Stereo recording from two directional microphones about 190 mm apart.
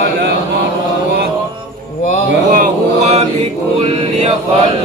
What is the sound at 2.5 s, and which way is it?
Chant, 40° right (ahead or behind).